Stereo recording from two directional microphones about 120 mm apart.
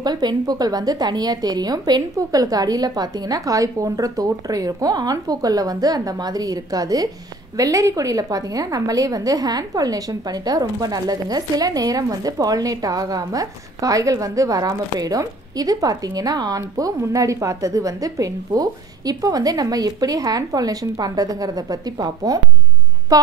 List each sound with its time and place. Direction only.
0.0 s a woman's voice: 35° right (ahead or behind)